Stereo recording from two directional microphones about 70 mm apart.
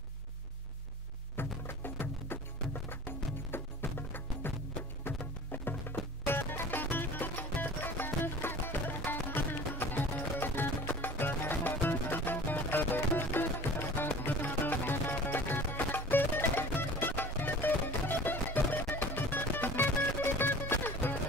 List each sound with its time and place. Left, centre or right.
1.3 s music: left